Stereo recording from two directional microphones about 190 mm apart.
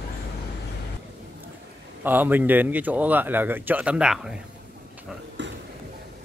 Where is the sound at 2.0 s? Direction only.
10° right (ahead or behind).